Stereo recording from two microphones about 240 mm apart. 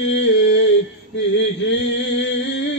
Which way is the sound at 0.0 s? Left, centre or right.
Left.